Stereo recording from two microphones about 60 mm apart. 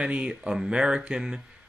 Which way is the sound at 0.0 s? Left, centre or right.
Centre.